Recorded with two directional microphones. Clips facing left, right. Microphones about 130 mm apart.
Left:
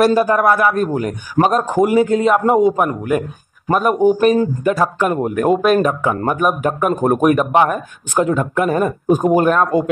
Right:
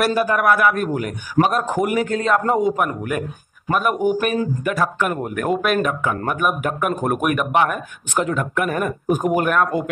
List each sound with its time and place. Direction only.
0.0 s a man's voice: 35° left (ahead or behind)
8.1 s speech: 20° left (ahead or behind)